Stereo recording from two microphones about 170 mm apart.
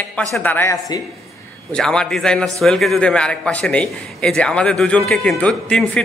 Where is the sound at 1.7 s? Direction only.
5° left (ahead or behind).